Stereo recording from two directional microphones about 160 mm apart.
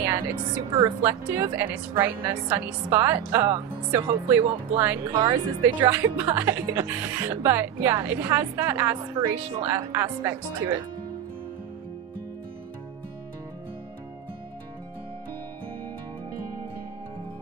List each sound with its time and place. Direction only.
0.0 s a woman's voice: 15° right (ahead or behind)
5.1 s speech: 25° right (ahead or behind)
5.6 s a woman's voice: 15° right (ahead or behind)